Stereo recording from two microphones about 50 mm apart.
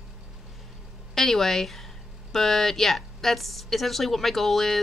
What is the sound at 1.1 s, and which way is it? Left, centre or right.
A woman's voice, centre.